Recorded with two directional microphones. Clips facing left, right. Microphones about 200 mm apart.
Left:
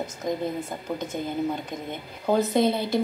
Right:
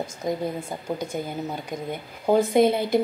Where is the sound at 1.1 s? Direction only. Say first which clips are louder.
Left 2 dB; 10° right (ahead or behind).